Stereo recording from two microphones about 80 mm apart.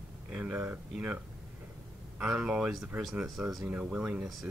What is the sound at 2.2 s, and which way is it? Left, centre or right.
Speech, centre.